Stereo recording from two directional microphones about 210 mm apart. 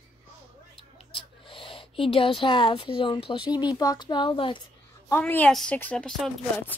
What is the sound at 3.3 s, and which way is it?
Speech, 20° left (ahead or behind).